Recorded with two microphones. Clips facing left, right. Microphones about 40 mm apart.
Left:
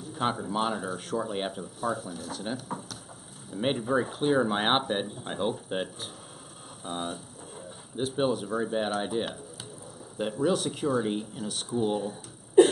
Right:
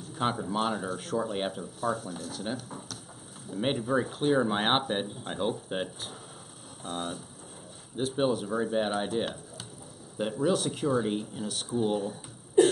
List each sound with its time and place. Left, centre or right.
0.0 s speech: centre